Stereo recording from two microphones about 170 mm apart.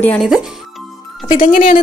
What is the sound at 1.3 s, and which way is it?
Music, 50° left (ahead or behind).